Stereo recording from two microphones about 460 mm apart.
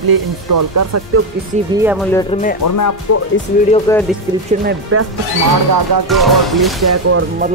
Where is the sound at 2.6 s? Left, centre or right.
Left.